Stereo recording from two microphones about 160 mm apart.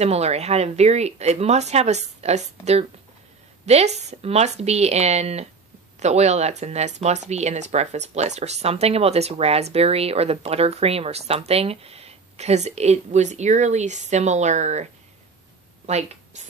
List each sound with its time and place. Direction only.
0.0 s speech: 40° right (ahead or behind)
16.3 s music: 45° right (ahead or behind)